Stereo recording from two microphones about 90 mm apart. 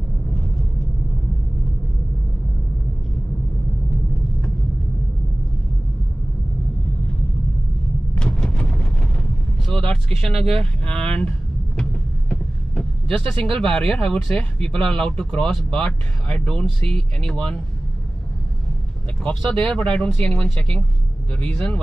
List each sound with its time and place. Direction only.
8.2 s vehicle: 10° left (ahead or behind)
13.6 s speech: 5° left (ahead or behind)
19.2 s speech: 10° left (ahead or behind)